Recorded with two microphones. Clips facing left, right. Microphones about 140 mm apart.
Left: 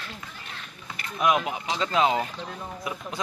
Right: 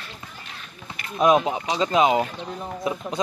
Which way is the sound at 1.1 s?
30° right (ahead or behind).